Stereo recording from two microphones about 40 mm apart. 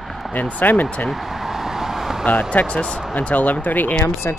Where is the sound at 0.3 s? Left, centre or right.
Left.